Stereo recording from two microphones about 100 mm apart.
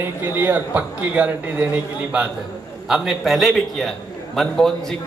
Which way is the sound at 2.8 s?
5° right (ahead or behind).